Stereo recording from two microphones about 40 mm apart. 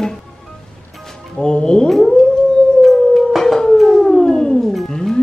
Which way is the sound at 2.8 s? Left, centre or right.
Centre.